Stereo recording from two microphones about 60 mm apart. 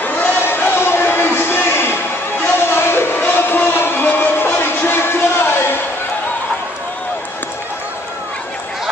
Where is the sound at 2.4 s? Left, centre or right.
Left.